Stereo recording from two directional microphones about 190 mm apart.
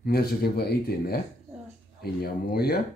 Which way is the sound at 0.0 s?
55° left (ahead or behind).